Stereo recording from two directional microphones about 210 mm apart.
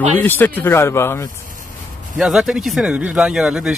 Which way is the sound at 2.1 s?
Centre (ahead or behind).